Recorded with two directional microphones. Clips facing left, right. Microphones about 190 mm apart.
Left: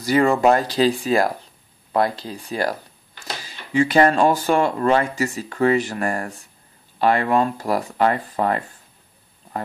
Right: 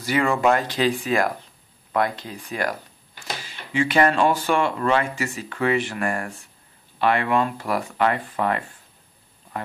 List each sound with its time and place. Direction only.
0.0 s speech: 40° left (ahead or behind)